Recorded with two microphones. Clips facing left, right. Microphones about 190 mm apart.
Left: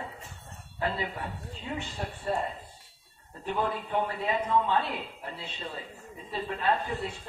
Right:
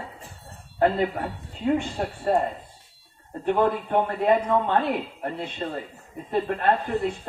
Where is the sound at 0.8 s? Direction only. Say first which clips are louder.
Right 10 dB; 55° right (ahead or behind).